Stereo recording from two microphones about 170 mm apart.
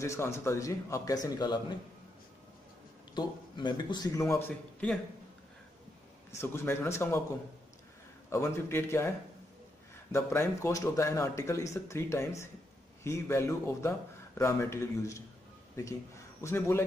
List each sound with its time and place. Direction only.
0.0 s a man's voice: 15° left (ahead or behind)
3.2 s a man's voice: 25° left (ahead or behind); by 4.9 s 10° left (ahead or behind)
6.3 s speech: 15° left (ahead or behind)
8.3 s speech: 15° left (ahead or behind)
10.1 s speech: 15° left (ahead or behind)